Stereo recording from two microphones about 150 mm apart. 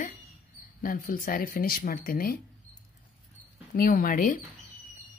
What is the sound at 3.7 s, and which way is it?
Speech, 65° left (ahead or behind).